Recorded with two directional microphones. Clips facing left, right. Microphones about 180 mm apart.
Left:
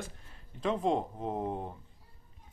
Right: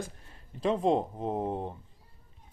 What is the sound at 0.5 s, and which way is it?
Speech, 35° right (ahead or behind).